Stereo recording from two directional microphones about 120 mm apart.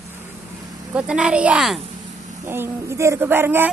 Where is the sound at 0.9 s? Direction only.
10° right (ahead or behind).